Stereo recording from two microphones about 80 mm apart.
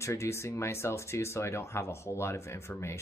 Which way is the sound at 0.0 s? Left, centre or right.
Left.